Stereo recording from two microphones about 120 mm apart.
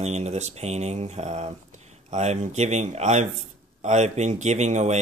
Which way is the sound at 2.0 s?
80° right.